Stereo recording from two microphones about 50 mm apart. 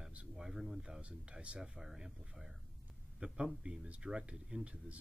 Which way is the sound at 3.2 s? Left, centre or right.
Right.